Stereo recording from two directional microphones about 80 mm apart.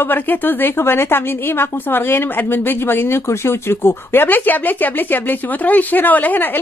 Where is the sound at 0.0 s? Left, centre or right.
Left.